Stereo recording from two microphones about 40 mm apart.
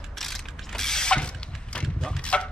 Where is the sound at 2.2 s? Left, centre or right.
Left.